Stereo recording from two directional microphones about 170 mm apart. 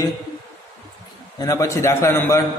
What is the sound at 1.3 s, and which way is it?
A man's voice, 20° left (ahead or behind).